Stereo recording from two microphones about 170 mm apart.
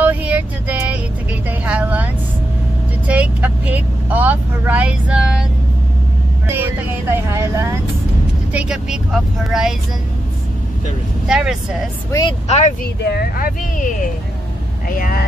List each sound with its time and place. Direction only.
0.0 s vehicle: 10° right (ahead or behind)
3.1 s speech: 10° right (ahead or behind)
6.4 s speech: 15° right (ahead or behind)
8.5 s speech: 5° right (ahead or behind)
11.2 s speech: 5° right (ahead or behind)
12.1 s speech: 25° left (ahead or behind)
12.4 s speech: 45° left (ahead or behind)
13.0 s speech: 65° left (ahead or behind)